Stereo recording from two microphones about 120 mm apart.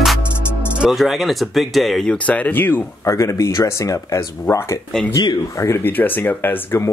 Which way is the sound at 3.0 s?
25° left (ahead or behind).